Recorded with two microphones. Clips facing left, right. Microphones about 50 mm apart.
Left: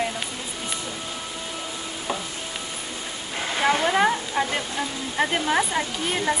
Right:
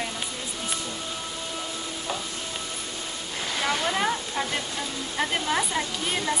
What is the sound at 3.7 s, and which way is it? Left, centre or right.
Speech, left.